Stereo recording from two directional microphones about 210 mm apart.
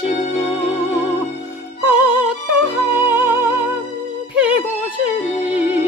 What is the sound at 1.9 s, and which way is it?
Music, 5° right (ahead or behind).